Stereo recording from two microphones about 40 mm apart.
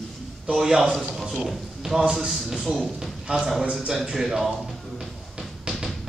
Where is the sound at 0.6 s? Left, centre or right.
Centre.